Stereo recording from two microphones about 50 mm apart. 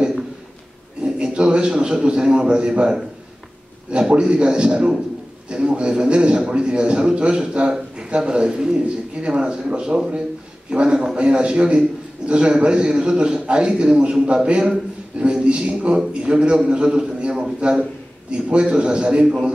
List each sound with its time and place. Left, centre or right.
1.0 s a man's voice: centre
4.1 s a man's voice: centre